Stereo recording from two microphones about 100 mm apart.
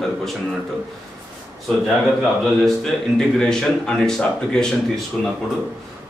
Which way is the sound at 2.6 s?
5° left (ahead or behind).